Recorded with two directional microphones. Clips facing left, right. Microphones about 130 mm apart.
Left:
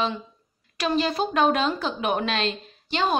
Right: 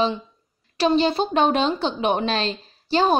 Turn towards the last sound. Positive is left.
turn(degrees=-35)  # may be behind; listen again after turning